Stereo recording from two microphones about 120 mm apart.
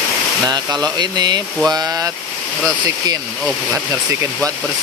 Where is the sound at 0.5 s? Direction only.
35° right (ahead or behind).